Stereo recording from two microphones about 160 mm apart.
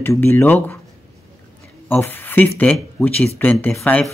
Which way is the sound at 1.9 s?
15° left (ahead or behind).